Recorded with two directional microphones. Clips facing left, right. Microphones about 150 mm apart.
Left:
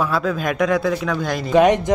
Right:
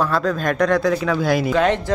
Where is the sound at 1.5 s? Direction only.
15° left (ahead or behind).